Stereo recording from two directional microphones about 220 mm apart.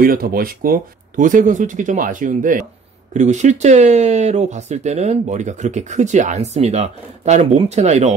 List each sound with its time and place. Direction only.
0.0 s speech: 40° right (ahead or behind)